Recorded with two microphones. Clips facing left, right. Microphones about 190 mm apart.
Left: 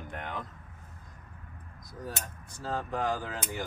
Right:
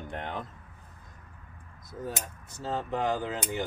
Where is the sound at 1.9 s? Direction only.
25° right (ahead or behind).